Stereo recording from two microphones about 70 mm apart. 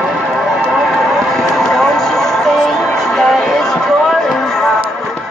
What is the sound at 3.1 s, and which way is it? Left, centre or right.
Music, centre.